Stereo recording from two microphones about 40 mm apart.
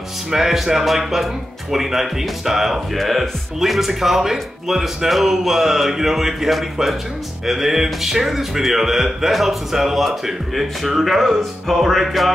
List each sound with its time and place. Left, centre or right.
0.3 s speech: centre